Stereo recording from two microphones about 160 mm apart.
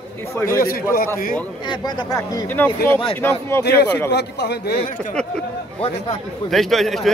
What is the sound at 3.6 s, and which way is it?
A man's voice, 90° left.